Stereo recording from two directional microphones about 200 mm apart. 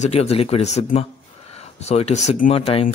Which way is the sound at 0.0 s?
30° left (ahead or behind).